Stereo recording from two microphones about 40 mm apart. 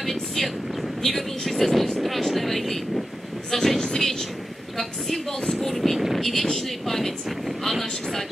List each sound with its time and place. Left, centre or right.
0.0 s vehicle: centre
3.5 s a sound: centre
6.4 s speech: centre